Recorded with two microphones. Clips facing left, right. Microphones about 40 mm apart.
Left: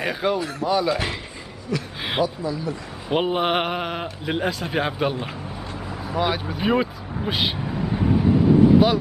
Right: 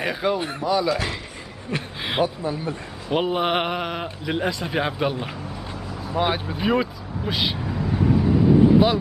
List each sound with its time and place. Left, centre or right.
0.0 s speech: centre
1.7 s speech: right
2.2 s speech: right
3.1 s speech: centre
6.1 s speech: centre
6.6 s vehicle: centre